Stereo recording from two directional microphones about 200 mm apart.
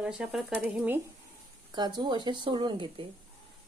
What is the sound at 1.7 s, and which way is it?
Speech, 20° right (ahead or behind).